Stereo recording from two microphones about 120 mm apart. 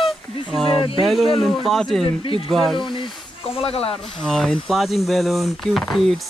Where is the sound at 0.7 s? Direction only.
45° left (ahead or behind).